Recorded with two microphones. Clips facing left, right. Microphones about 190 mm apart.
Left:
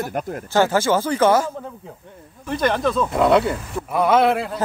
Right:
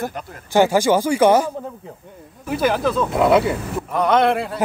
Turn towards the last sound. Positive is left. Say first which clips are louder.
# even
turn(degrees=0)  # may be behind; listen again after turning